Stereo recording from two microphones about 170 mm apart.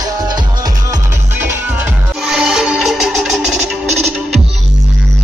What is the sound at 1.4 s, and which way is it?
Music, 10° right (ahead or behind).